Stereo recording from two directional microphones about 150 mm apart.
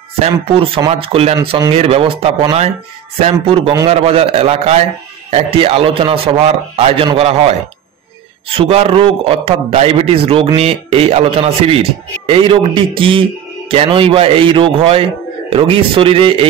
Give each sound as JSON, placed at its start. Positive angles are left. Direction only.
{"t": 0.2, "sound": "a man's voice", "side_deg": -40}